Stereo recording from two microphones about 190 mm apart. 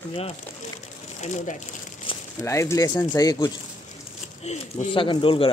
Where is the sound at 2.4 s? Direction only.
15° left (ahead or behind).